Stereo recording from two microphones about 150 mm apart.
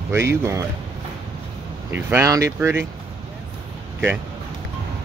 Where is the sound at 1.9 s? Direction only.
15° right (ahead or behind).